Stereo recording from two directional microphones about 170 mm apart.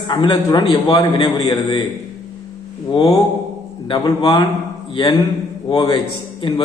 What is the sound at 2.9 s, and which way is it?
A man's voice, 30° left (ahead or behind).